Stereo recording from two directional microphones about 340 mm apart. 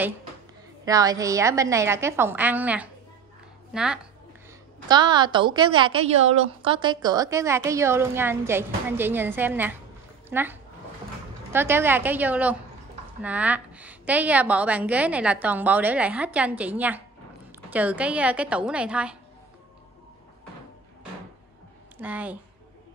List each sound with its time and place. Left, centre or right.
0.8 s a woman's voice: centre
4.8 s a woman's voice: centre
22.0 s a woman's voice: centre